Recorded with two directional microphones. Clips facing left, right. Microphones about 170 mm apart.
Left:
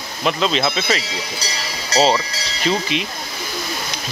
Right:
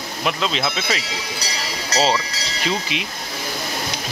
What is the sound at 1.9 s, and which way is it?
Speech, 30° left (ahead or behind).